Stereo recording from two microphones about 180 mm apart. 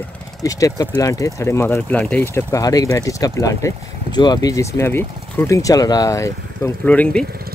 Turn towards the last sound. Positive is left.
turn(degrees=5)  # may be behind; listen again after turning